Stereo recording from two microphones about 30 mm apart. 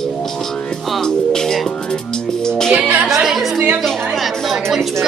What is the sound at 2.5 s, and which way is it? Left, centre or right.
Music, centre.